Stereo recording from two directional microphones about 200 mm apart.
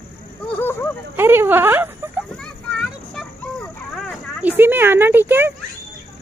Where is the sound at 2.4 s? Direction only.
Centre (ahead or behind).